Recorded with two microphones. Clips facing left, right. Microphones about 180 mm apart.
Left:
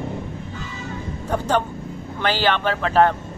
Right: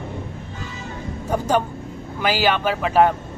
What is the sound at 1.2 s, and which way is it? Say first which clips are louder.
A man's voice: right 1 dB; 10° right (ahead or behind).